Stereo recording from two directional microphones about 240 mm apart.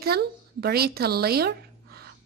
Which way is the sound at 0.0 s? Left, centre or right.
Right.